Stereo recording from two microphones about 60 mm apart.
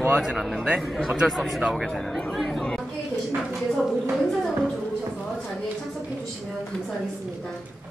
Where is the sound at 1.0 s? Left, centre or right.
Centre.